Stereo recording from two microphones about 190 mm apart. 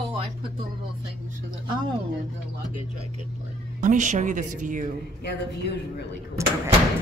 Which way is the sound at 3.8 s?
40° right (ahead or behind).